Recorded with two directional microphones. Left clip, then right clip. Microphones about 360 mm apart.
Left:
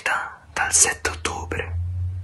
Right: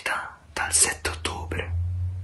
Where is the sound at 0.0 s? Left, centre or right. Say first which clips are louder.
Left 5 dB; centre.